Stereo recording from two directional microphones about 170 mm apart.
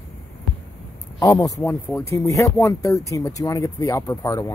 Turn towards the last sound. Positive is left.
turn(degrees=20)  # may be behind; listen again after turning